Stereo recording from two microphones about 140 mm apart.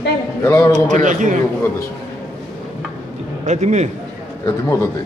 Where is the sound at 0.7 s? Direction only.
65° right (ahead or behind).